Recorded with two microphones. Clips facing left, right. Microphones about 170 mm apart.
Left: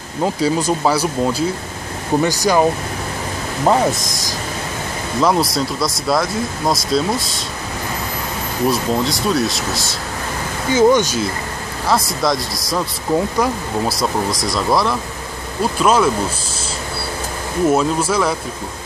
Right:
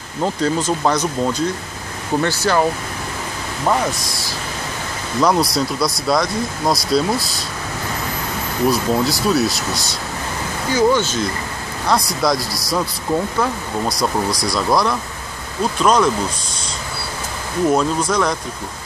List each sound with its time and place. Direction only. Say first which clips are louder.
0.2 s speech: left 2 dB; 10° left (ahead or behind)
3.6 s speech: left 4 dB; 25° left (ahead or behind)
5.2 s speech: even; centre (ahead or behind)
8.6 s speech: right 1 dB; centre (ahead or behind)
10.7 s speech: left 3 dB; 20° left (ahead or behind)
11.9 s speech: even; centre (ahead or behind)
17.6 s speech: left 1 dB; 5° left (ahead or behind)